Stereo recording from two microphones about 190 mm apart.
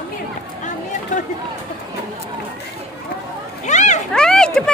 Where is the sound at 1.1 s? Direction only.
40° left (ahead or behind).